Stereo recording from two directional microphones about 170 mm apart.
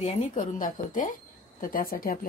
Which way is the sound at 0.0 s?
45° left (ahead or behind).